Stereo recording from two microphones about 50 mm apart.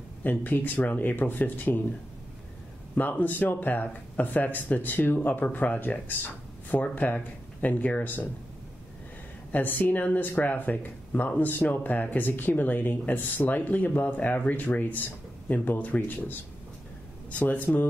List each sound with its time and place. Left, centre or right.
0.2 s speech: left
3.0 s speech: left
9.5 s speech: left